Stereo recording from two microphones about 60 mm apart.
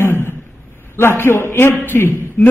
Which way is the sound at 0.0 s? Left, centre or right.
Left.